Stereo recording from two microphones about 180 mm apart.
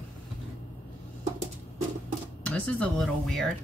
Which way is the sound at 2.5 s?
5° left (ahead or behind).